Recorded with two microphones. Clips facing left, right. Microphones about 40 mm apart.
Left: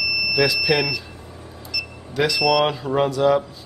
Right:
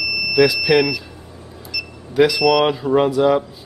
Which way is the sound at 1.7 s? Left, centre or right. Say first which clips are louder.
Right 1 dB; centre.